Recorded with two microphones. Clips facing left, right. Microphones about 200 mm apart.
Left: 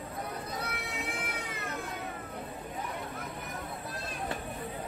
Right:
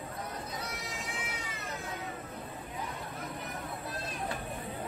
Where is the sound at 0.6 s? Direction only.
60° left (ahead or behind).